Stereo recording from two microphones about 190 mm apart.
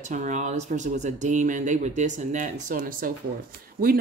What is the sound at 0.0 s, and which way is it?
Speech, 40° right (ahead or behind).